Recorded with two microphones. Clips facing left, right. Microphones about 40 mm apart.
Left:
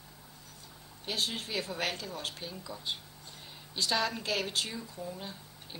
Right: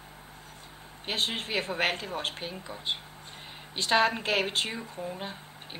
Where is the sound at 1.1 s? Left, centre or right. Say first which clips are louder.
Right 4 dB; right.